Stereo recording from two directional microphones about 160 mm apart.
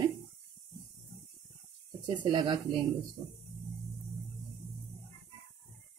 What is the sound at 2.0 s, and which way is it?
Speech, 30° right (ahead or behind).